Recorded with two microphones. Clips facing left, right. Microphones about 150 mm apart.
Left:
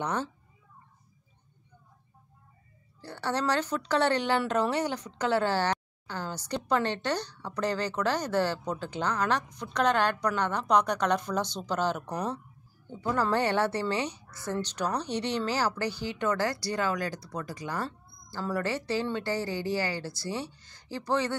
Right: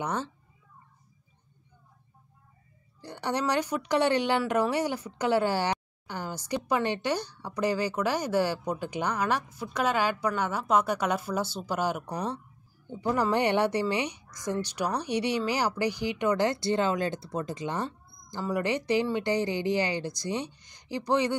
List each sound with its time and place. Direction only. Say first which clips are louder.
0.0 s speech: even; 10° right (ahead or behind)
3.0 s a woman's voice: right 1 dB; 15° right (ahead or behind)